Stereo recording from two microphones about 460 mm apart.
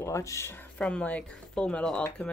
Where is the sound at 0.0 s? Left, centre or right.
Centre.